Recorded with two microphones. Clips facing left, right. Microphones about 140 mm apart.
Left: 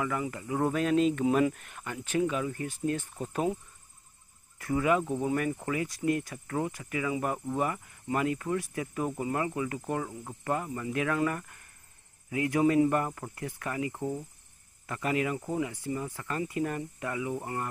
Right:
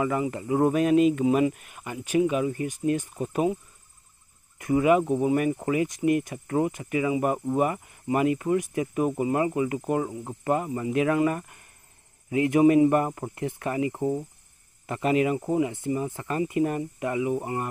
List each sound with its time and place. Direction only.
0.0 s speech: 25° right (ahead or behind)
4.6 s speech: 20° right (ahead or behind)